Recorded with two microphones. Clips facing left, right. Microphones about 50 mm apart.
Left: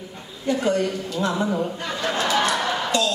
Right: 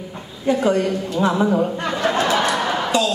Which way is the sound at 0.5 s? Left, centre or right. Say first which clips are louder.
Right 4 dB; centre.